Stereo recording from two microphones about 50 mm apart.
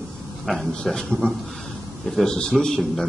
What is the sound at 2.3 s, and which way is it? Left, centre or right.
Speech, centre.